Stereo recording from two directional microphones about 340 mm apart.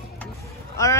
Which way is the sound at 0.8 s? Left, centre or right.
Centre.